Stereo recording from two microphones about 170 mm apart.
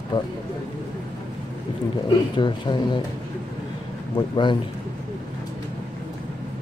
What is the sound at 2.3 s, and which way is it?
Speech, 25° left (ahead or behind).